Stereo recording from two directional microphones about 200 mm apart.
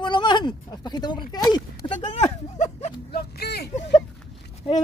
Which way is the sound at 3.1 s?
55° left (ahead or behind).